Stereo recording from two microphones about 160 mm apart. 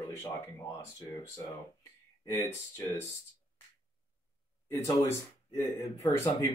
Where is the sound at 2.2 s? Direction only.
15° left (ahead or behind).